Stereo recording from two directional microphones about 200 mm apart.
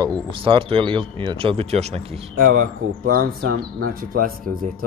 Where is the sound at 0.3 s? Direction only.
25° right (ahead or behind).